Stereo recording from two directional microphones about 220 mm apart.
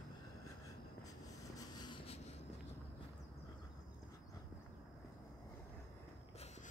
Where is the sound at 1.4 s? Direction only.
15° left (ahead or behind).